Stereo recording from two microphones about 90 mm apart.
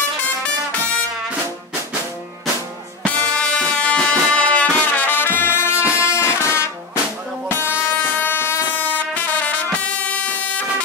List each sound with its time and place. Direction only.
0.4 s music: 15° left (ahead or behind)
3.1 s music: 15° left (ahead or behind)